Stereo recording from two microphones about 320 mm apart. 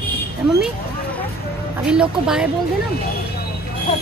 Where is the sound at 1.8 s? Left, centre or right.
Centre.